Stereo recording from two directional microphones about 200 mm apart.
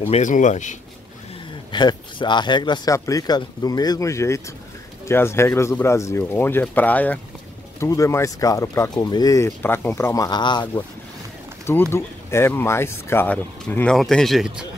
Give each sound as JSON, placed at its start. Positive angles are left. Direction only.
{"t": 0.0, "sound": "speech", "side_deg": 40}
{"t": 1.7, "sound": "speech", "side_deg": 20}
{"t": 11.6, "sound": "speech", "side_deg": 10}